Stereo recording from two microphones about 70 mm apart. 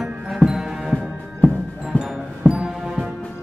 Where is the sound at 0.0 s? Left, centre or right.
Centre.